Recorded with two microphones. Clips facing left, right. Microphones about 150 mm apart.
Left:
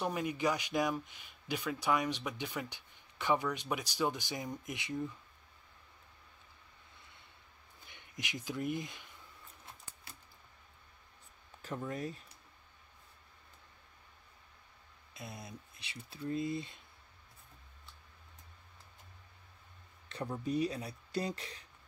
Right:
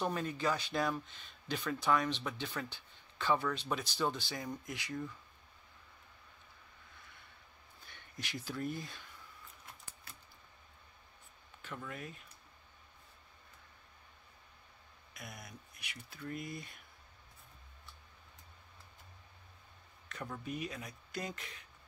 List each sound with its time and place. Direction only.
0.0 s speech: 15° left (ahead or behind)
7.8 s speech: 20° left (ahead or behind)
11.6 s speech: 35° left (ahead or behind)
15.1 s speech: 25° left (ahead or behind)
20.1 s speech: 30° left (ahead or behind)